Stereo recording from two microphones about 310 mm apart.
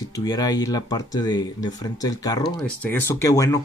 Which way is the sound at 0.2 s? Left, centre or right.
Centre.